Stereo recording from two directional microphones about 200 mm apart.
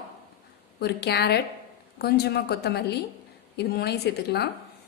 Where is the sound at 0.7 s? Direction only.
55° left (ahead or behind).